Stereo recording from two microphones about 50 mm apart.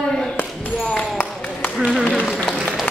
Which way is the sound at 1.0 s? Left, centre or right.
Left.